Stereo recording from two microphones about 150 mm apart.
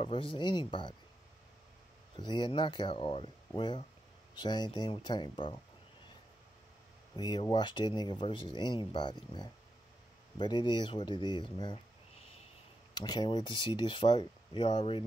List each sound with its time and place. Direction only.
0.0 s speech: 35° left (ahead or behind)
2.1 s speech: 30° left (ahead or behind)
7.2 s speech: 30° left (ahead or behind)
12.9 s speech: 30° left (ahead or behind)